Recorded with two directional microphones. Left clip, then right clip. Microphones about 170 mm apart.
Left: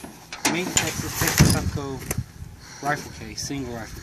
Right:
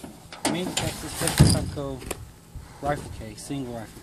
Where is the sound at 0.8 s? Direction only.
20° right (ahead or behind).